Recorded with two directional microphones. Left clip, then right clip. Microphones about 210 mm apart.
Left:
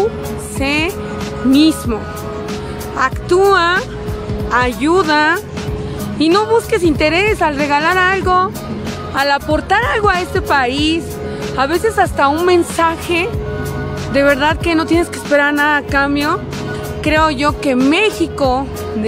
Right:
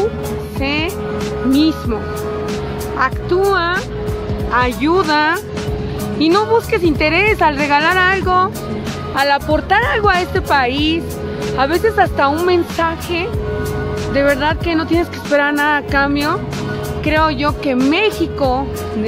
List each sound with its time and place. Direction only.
0.6 s music: 20° left (ahead or behind)
1.6 s speech: 25° left (ahead or behind)
3.0 s speech: 25° left (ahead or behind)
4.5 s speech: 15° left (ahead or behind)
7.6 s speech: 15° left (ahead or behind)